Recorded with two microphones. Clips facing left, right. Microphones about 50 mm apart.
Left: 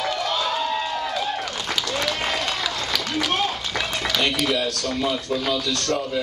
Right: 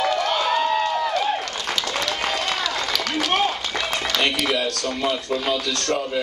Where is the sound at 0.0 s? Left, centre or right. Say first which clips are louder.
Right 3 dB; right.